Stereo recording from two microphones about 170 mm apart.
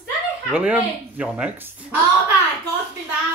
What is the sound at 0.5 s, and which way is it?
Speech, 10° right (ahead or behind).